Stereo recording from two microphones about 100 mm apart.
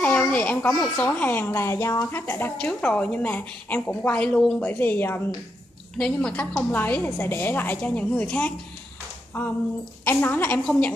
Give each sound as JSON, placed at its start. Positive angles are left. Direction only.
{"t": 0.0, "sound": "a sound", "side_deg": 15}
{"t": 0.9, "sound": "a woman's voice", "side_deg": 20}
{"t": 5.9, "sound": "a woman's voice", "side_deg": 5}
{"t": 6.7, "sound": "a woman's voice", "side_deg": 20}